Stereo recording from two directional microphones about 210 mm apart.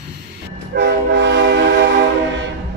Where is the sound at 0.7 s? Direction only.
55° right (ahead or behind).